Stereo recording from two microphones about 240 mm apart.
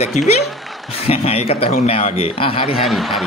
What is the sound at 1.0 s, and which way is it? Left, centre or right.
Speech, left.